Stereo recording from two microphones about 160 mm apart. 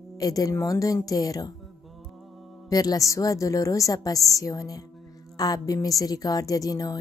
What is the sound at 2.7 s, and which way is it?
A woman's voice, 25° left (ahead or behind).